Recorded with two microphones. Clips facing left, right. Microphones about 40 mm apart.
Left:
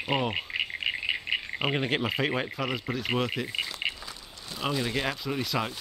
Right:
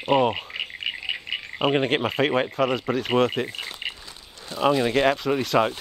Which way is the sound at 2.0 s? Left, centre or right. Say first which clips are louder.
Right 5 dB; right.